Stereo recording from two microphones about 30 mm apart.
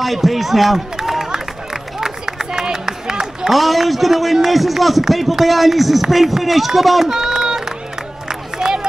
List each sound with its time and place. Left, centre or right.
0.0 s a man's voice: centre
1.3 s run: centre
3.4 s speech: centre
7.1 s a sound: centre
8.3 s crowd: centre